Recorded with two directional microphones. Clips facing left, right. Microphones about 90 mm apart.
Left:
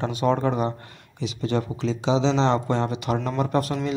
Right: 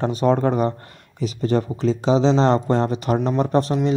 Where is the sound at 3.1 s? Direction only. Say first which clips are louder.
Right 5 dB; 25° right (ahead or behind).